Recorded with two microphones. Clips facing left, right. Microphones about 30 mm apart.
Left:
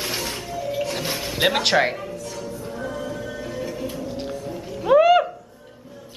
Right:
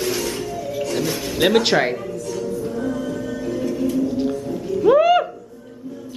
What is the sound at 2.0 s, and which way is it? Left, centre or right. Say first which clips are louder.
Music: right 6 dB; centre.